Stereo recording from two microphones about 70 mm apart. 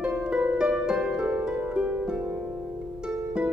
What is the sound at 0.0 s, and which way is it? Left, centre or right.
Harp, centre.